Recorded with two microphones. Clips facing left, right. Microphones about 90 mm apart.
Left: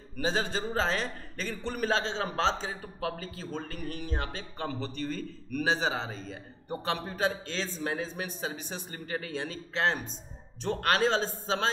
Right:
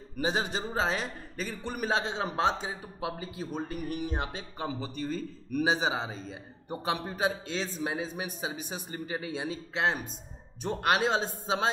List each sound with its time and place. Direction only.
0.2 s a man's voice: 15° right (ahead or behind)